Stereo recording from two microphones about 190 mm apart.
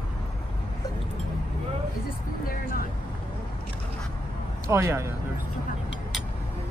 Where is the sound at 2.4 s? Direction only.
50° left (ahead or behind).